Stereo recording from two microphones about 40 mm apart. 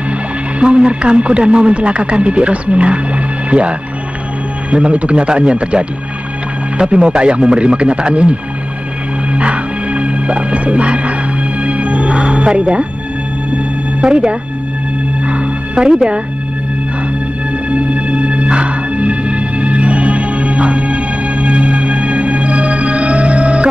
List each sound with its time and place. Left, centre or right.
0.6 s speech: right
9.3 s music: right
14.0 s speech: right
15.2 s music: right
17.6 s music: right